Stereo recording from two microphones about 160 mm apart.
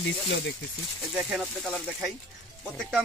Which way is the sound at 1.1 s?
5° right (ahead or behind).